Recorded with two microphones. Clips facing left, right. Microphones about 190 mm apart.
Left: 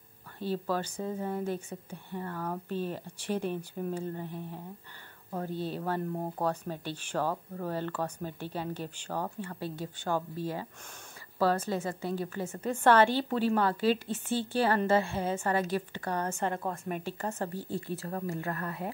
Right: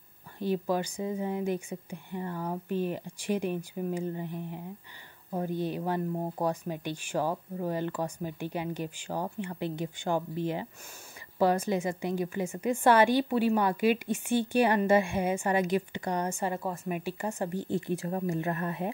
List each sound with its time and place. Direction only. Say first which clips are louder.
0.4 s speech: right 3 dB; 15° right (ahead or behind)